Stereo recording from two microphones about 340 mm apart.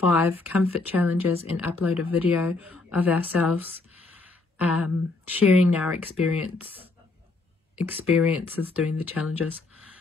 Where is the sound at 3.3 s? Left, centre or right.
Left.